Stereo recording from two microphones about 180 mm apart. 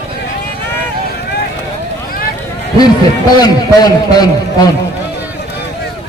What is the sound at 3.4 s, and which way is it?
A man's voice, 20° left (ahead or behind).